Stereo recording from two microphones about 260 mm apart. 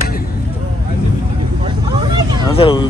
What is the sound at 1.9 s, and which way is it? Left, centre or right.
Vehicle, centre.